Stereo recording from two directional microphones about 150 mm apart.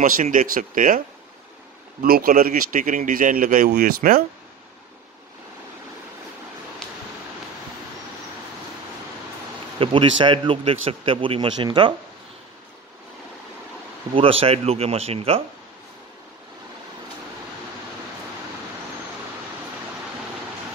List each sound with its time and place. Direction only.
0.0 s speech: 60° right (ahead or behind)
2.0 s speech: 75° right (ahead or behind)
9.8 s a man's voice: 35° right (ahead or behind)
14.1 s a man's voice: 40° right (ahead or behind)